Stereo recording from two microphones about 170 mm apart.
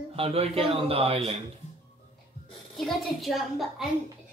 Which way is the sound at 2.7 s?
Centre (ahead or behind).